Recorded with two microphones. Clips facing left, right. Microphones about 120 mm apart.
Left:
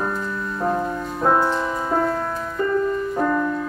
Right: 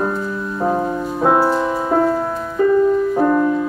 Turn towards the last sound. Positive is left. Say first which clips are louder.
# right 6 dB
turn(degrees=-20)  # may be behind; listen again after turning